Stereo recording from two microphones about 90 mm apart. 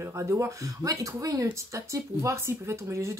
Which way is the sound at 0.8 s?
40° right (ahead or behind).